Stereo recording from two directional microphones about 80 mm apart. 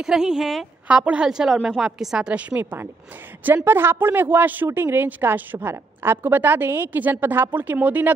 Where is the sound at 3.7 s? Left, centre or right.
Right.